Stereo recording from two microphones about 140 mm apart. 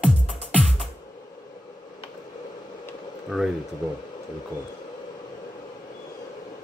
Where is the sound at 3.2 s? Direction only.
Centre (ahead or behind).